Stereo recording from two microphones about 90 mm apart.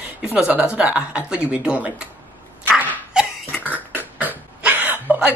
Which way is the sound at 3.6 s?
20° right (ahead or behind).